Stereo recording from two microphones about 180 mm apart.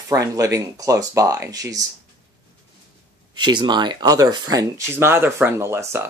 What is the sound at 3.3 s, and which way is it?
Speech, 25° right (ahead or behind).